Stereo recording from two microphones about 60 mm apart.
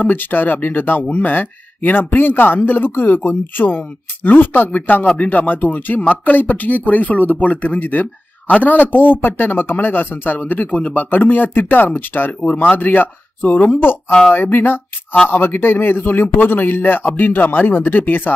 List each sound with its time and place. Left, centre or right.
0.0 s speech: left